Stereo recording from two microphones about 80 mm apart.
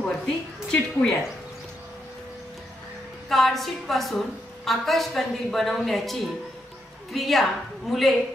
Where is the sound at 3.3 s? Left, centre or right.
Centre.